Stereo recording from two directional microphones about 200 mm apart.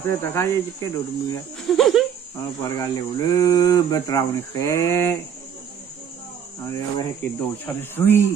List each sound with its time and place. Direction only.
0.0 s speech: 15° left (ahead or behind)
1.6 s a sound: centre (ahead or behind)
2.6 s speech: 20° left (ahead or behind)
6.6 s speech: 15° left (ahead or behind)